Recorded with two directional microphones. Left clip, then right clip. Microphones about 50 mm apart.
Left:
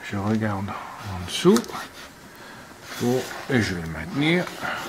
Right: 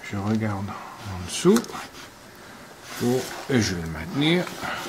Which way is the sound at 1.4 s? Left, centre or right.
Left.